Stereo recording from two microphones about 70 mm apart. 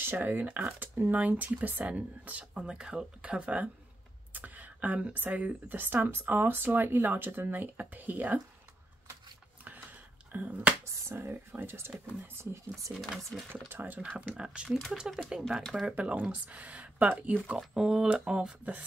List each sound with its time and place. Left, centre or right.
0.0 s speech: right
10.3 s speech: centre
11.1 s speech: right
13.2 s speech: centre
13.5 s speech: right; by 15.4 s centre
16.0 s speech: centre
17.6 s speech: centre